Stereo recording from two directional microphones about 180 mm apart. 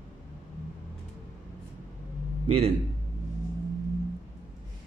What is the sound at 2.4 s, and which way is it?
Speech, 35° right (ahead or behind).